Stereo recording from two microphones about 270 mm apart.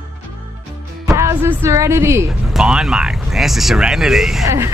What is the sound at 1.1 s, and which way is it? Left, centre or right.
Speech, centre.